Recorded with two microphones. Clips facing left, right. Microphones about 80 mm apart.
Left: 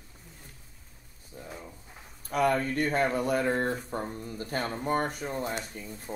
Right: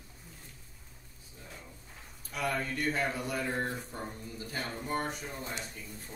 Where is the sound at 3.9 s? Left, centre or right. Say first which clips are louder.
Left 6 dB; left.